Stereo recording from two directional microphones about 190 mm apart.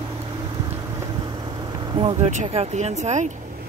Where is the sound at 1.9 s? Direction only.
30° right (ahead or behind).